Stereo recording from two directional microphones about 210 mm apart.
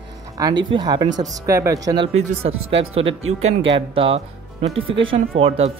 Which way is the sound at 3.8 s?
25° right (ahead or behind).